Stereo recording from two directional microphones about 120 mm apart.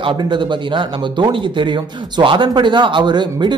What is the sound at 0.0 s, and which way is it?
A man's voice, 40° right (ahead or behind).